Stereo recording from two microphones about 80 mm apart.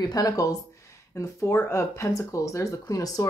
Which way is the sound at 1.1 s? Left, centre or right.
Left.